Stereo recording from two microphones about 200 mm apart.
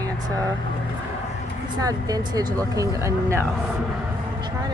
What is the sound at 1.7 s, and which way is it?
Speech, 20° right (ahead or behind).